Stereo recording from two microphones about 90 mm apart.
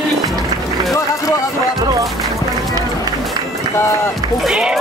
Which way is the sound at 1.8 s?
40° right (ahead or behind).